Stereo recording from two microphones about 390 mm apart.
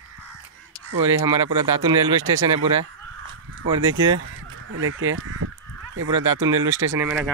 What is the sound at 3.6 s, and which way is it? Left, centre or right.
Speech, right.